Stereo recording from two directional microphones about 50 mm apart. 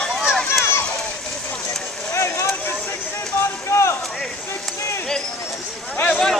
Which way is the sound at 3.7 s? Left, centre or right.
Left.